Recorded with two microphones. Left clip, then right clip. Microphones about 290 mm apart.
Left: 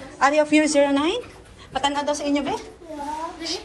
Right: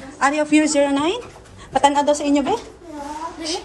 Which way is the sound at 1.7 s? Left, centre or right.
Right.